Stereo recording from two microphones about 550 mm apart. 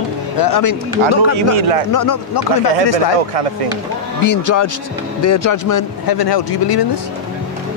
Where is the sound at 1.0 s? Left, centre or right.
Right.